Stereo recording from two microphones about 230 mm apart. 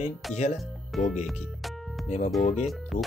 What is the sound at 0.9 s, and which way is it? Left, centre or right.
Speech, centre.